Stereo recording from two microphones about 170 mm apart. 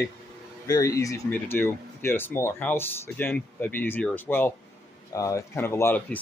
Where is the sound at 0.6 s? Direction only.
20° left (ahead or behind).